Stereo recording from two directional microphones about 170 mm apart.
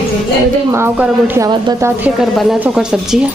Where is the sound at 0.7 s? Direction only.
15° right (ahead or behind).